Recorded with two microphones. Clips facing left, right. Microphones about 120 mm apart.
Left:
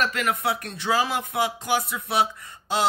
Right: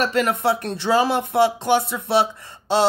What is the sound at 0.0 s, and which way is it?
Speech, 30° right (ahead or behind).